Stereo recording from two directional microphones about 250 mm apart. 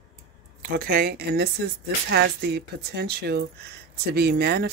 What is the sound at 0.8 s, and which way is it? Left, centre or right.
A woman's voice, right.